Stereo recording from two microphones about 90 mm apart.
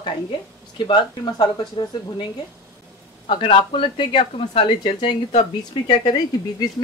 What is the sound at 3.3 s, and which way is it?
Speech, 70° left (ahead or behind).